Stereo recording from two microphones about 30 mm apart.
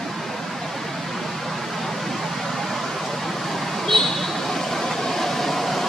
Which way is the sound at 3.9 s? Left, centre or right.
Centre.